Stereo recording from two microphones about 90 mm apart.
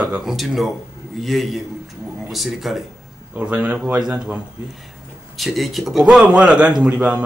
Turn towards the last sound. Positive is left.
turn(degrees=-15)  # may be behind; listen again after turning